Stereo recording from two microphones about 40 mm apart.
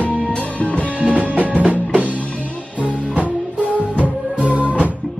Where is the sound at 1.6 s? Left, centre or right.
Right.